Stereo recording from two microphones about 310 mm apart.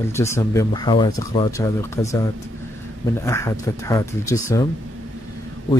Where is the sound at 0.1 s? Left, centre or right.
Centre.